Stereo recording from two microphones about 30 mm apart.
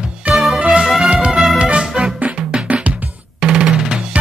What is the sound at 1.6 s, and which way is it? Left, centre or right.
Music, right.